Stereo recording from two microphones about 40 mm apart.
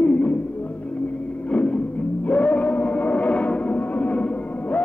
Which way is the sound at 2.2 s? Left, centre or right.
Left.